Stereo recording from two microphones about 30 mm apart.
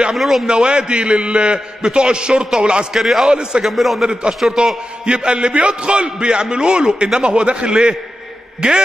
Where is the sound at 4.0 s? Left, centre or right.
Right.